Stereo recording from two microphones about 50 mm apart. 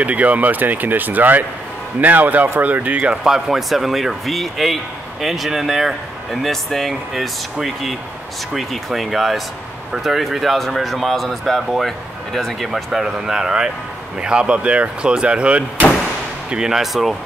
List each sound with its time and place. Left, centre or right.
0.0 s speech: right
3.3 s speech: centre